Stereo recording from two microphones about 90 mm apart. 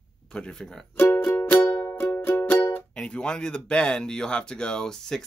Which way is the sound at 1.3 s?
15° left (ahead or behind).